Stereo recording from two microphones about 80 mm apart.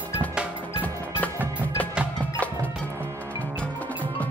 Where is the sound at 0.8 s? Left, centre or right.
Left.